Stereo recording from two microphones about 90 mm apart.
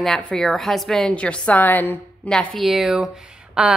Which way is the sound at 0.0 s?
5° left (ahead or behind).